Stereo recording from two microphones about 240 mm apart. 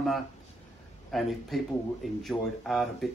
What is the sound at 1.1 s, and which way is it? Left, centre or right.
Speech, centre.